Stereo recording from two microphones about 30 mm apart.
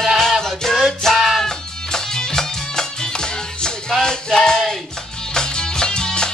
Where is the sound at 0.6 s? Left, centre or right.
Centre.